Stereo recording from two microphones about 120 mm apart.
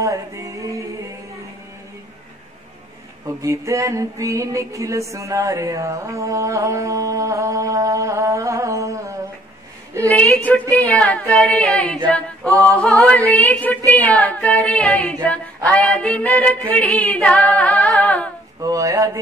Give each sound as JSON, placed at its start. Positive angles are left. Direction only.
{"t": 0.0, "sound": "music", "side_deg": -25}
{"t": 3.3, "sound": "music", "side_deg": -25}
{"t": 10.0, "sound": "female singing", "side_deg": 10}
{"t": 12.4, "sound": "a sound", "side_deg": -25}
{"t": 12.7, "sound": "female singing", "side_deg": 10}
{"t": 18.6, "sound": "a sound", "side_deg": -30}